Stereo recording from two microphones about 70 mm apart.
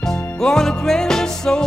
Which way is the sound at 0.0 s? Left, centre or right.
Centre.